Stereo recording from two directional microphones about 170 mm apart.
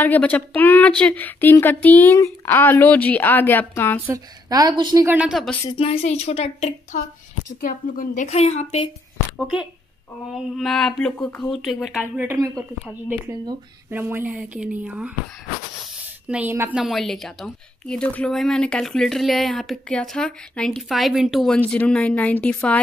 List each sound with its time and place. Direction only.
0.0 s speech: 10° left (ahead or behind)
4.0 s a woman's voice: 20° right (ahead or behind)
5.0 s speech: 10° right (ahead or behind)
5.8 s a woman's voice: 35° left (ahead or behind)
7.6 s a woman's voice: 50° left (ahead or behind)
9.4 s speech: 5° right (ahead or behind)
16.3 s speech: 10° right (ahead or behind)
16.8 s speech: centre (ahead or behind)